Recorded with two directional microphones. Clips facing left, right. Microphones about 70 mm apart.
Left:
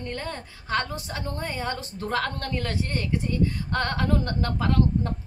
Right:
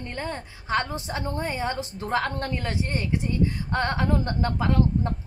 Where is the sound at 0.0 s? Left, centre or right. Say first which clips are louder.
Right 1 dB; centre.